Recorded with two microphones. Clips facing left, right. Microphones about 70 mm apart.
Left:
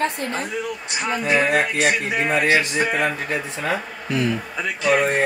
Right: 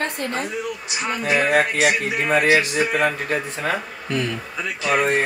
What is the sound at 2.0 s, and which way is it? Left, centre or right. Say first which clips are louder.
Speech: left 1 dB; centre.